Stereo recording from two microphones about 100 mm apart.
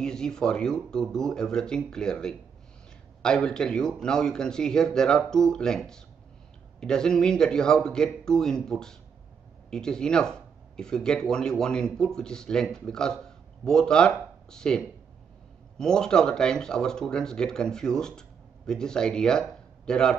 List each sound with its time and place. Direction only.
0.0 s speech: 5° left (ahead or behind)
13.2 s a sound: 5° left (ahead or behind)
14.5 s speech: 5° left (ahead or behind)